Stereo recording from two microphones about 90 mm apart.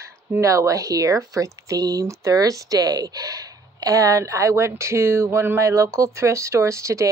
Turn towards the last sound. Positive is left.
turn(degrees=-35)  # may be behind; listen again after turning